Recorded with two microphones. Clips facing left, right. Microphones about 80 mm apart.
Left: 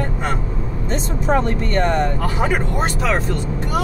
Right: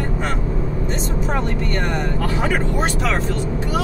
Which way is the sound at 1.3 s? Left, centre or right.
Left.